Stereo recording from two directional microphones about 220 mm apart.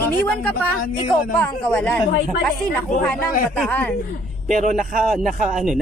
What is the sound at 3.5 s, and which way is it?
Speech, 5° left (ahead or behind).